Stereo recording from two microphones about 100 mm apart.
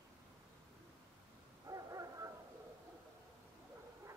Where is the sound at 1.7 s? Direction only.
35° right (ahead or behind).